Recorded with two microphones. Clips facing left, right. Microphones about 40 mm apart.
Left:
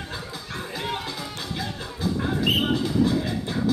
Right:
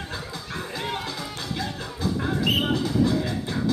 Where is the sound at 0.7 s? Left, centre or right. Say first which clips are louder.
Left 1 dB; centre.